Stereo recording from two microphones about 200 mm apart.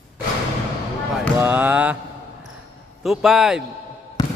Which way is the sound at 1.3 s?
10° right (ahead or behind).